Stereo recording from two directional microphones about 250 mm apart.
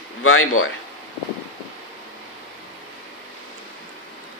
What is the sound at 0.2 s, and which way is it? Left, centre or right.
Speech, left.